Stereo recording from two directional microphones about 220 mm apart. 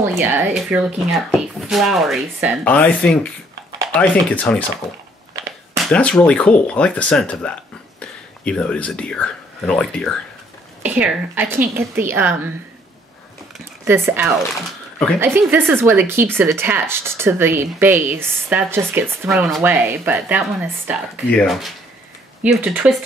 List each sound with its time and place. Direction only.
0.2 s speech: 10° right (ahead or behind)
5.9 s speech: 5° left (ahead or behind)
10.8 s speech: 5° right (ahead or behind)
13.8 s speech: 10° right (ahead or behind)